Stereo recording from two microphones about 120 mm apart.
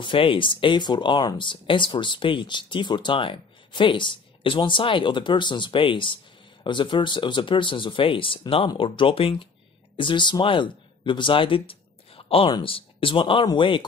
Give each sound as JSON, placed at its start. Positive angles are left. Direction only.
{"t": 0.0, "sound": "speech", "side_deg": 45}